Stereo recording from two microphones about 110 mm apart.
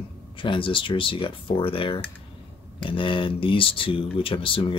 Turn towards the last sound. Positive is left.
turn(degrees=50)  # may be behind; listen again after turning